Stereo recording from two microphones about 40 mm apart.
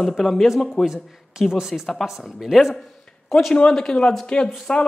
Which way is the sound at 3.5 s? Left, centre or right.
Left.